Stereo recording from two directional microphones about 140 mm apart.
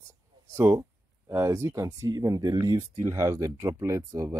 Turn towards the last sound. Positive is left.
turn(degrees=-20)  # may be behind; listen again after turning